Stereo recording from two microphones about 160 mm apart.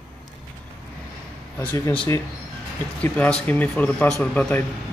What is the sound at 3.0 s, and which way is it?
Speech, 10° left (ahead or behind).